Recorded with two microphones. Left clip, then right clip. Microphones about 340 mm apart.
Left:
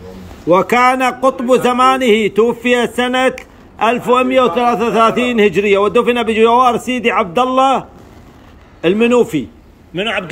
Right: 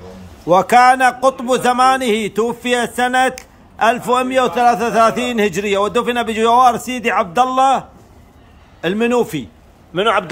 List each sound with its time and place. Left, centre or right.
0.5 s speech: centre
8.8 s speech: centre